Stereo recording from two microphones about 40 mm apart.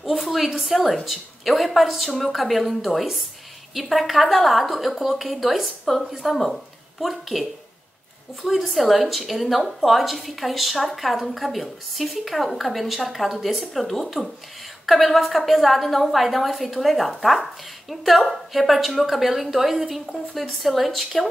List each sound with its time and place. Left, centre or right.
0.1 s a woman's voice: centre